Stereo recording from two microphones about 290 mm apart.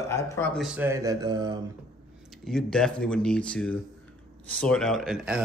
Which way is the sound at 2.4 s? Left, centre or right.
Centre.